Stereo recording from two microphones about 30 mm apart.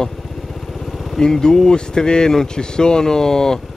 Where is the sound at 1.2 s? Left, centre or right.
Centre.